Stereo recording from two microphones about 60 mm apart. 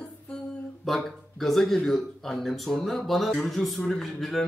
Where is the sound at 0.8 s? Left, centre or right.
Centre.